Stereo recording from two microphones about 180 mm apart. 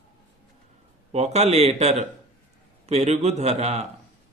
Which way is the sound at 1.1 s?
40° right (ahead or behind).